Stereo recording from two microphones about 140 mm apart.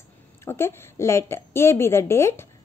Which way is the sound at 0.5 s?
15° left (ahead or behind).